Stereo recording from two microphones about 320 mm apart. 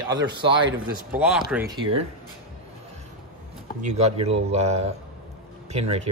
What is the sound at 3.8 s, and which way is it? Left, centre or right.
Speech, right.